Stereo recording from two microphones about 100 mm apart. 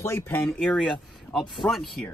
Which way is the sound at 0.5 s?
10° left (ahead or behind).